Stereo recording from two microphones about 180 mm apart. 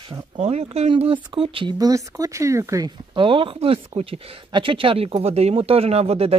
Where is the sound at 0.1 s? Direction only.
35° right (ahead or behind).